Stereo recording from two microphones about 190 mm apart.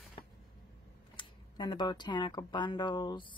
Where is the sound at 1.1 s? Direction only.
25° left (ahead or behind).